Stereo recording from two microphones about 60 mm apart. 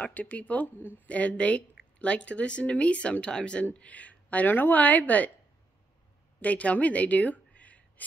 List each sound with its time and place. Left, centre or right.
0.0 s speech: left
1.0 s speech: left
6.4 s a woman's voice: left